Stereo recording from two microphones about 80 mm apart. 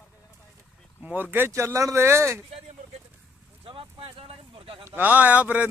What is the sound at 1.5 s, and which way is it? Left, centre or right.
Speech, right.